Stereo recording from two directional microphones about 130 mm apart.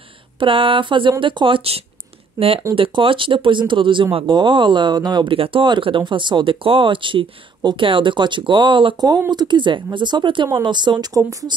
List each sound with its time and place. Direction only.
0.4 s speech: 40° right (ahead or behind)